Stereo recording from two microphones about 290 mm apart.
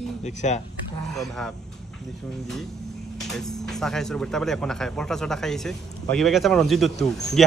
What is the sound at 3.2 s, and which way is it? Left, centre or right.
Speech, centre.